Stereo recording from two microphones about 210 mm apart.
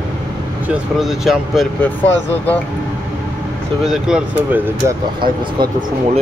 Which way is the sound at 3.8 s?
5° right (ahead or behind).